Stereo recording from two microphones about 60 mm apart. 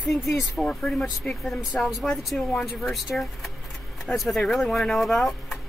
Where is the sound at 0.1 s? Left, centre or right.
Centre.